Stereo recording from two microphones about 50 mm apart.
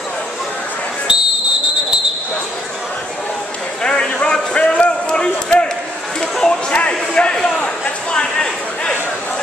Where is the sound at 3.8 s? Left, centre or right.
Centre.